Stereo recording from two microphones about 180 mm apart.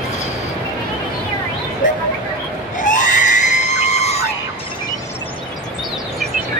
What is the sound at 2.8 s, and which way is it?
Screaming, 45° left (ahead or behind).